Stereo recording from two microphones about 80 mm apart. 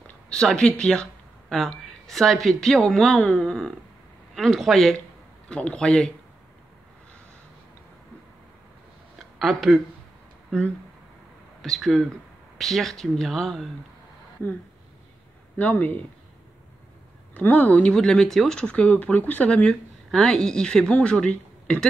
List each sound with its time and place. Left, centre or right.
0.0 s speech: centre
5.5 s speech: centre
9.4 s speech: centre
11.6 s speech: centre
15.5 s speech: left
17.3 s speech: left
20.1 s speech: centre